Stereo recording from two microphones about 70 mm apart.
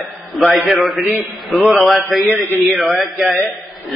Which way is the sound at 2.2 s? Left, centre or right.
Left.